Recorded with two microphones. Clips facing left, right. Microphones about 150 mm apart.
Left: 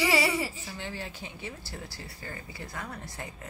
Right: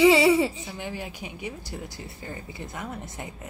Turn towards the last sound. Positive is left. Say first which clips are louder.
# right 4 dB
turn(degrees=-20)  # may be behind; listen again after turning